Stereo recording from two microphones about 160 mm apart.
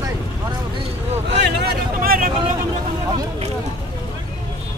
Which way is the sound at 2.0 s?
60° right (ahead or behind).